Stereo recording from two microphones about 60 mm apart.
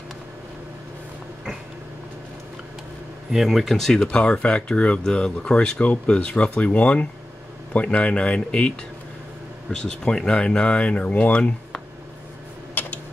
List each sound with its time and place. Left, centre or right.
3.3 s speech: centre
12.8 s typing: left